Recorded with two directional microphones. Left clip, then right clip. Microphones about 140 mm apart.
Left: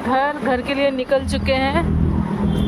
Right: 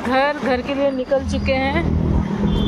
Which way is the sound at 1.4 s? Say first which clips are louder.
Left 1 dB; 25° left (ahead or behind).